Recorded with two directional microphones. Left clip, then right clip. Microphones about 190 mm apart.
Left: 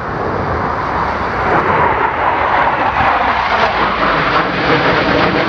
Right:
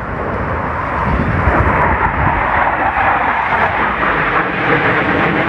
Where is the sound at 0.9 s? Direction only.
50° left (ahead or behind).